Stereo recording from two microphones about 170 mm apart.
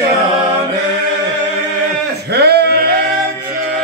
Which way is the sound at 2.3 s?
75° right (ahead or behind).